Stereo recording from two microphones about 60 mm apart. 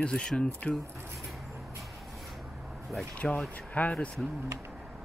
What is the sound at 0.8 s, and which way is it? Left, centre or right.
Speech, right.